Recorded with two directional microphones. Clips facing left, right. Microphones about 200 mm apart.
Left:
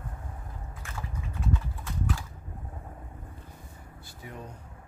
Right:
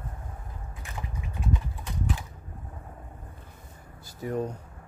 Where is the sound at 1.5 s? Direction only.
20° right (ahead or behind).